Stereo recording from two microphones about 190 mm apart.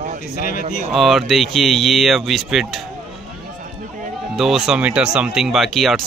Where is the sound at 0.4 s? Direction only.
50° left (ahead or behind).